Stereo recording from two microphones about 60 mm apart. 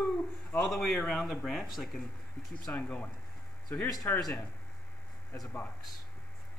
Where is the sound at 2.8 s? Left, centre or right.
Left.